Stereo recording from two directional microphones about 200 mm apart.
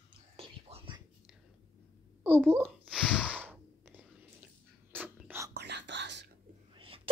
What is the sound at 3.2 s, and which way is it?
Whispering, 10° right (ahead or behind).